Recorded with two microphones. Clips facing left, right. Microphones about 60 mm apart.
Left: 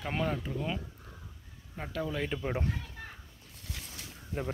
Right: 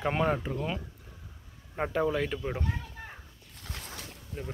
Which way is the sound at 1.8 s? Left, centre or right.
Right.